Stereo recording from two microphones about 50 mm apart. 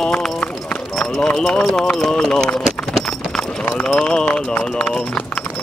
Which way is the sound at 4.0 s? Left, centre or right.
Left.